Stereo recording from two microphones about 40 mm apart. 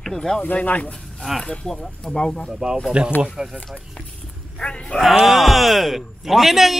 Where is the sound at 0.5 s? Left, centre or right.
Left.